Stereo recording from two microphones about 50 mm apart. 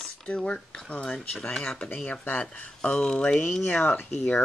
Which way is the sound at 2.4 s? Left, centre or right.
Left.